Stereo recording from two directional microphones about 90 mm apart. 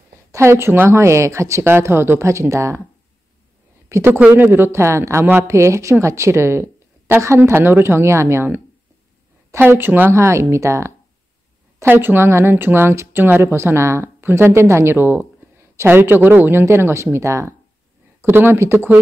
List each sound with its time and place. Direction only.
0.3 s speech: 30° right (ahead or behind)
3.9 s speech: 25° right (ahead or behind)